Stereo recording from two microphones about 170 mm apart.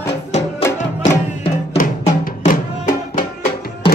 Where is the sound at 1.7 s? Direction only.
50° left (ahead or behind).